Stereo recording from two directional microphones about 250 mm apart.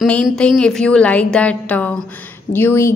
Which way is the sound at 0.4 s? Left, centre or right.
Centre.